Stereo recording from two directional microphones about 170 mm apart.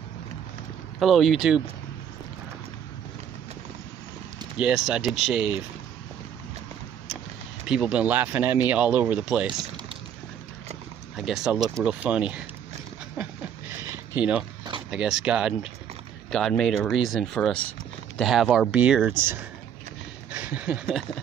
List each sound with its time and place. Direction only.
0.9 s speech: centre (ahead or behind)
4.6 s speech: 5° right (ahead or behind)
7.6 s speech: 5° right (ahead or behind)
9.5 s speech: 30° right (ahead or behind)
11.1 s speech: 5° right (ahead or behind)
13.8 s a sound: 10° right (ahead or behind)
14.9 s speech: 5° right (ahead or behind)
20.2 s a sound: 10° right (ahead or behind)